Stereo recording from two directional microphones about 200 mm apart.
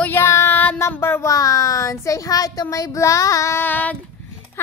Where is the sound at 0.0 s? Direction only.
10° left (ahead or behind).